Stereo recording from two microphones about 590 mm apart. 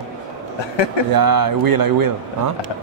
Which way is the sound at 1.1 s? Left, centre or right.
Right.